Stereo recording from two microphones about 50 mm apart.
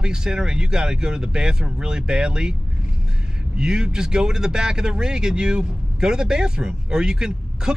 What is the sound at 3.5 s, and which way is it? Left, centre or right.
Speech, centre.